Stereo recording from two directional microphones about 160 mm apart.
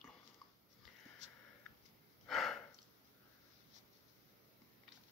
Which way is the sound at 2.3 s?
Centre (ahead or behind).